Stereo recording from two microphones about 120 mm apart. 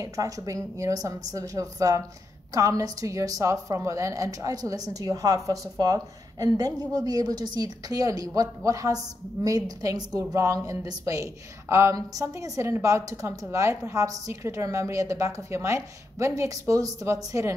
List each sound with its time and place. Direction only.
0.0 s a woman's voice: 30° right (ahead or behind)